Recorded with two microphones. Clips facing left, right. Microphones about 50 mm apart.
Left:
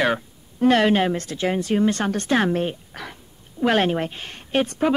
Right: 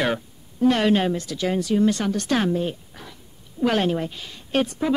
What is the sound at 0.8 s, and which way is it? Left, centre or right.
Speech, left.